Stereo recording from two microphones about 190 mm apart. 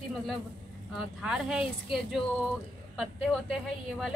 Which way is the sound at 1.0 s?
5° right (ahead or behind).